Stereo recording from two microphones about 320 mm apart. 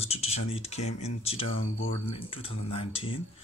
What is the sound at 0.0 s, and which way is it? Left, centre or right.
Speech, centre.